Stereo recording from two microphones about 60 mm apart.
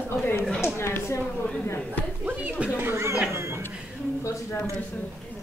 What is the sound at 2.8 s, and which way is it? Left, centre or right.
Speech, right.